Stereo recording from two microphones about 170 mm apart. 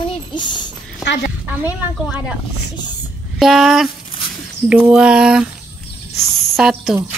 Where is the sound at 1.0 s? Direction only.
85° left.